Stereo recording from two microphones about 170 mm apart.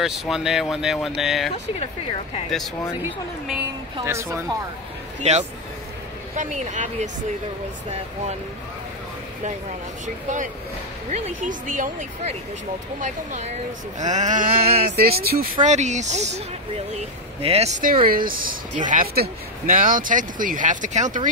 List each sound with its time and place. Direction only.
0.0 s speech: centre (ahead or behind)
4.0 s speech: 15° right (ahead or behind)
5.2 s speech: 40° right (ahead or behind)
10.0 s speech: 50° right (ahead or behind); by 15.4 s 65° right (ahead or behind)
15.6 s speech: 45° right (ahead or behind)
18.0 s speech: 60° right (ahead or behind)